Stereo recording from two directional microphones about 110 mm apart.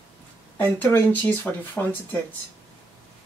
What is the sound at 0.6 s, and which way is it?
Speech, 15° left (ahead or behind).